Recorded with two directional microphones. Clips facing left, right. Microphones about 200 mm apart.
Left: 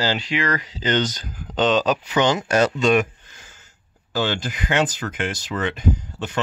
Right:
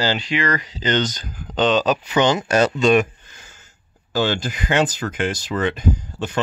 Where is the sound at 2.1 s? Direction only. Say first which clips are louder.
Right 2 dB; 25° right (ahead or behind).